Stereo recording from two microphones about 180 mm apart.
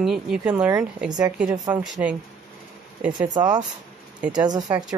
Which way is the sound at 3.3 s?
20° right (ahead or behind).